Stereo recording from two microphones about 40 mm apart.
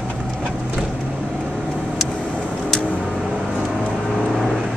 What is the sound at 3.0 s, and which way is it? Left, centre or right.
Vehicle, centre.